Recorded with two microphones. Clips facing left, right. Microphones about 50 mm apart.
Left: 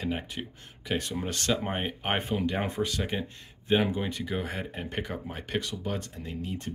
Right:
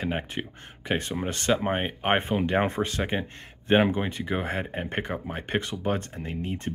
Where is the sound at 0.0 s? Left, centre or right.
Right.